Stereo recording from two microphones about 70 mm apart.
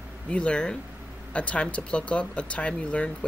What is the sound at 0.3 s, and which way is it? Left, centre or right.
Speech, centre.